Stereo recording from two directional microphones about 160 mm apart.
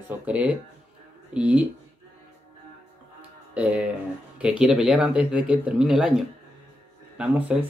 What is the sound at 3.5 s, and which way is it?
Speech, 5° right (ahead or behind).